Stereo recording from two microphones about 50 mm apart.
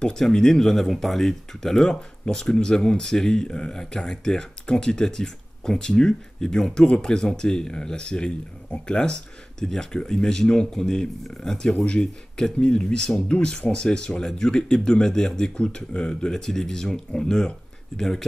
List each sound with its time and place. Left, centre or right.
0.0 s speech: centre